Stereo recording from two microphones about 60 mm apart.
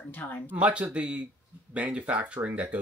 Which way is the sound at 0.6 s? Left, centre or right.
Right.